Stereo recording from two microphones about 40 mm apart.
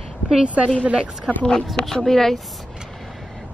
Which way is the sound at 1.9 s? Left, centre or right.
Centre.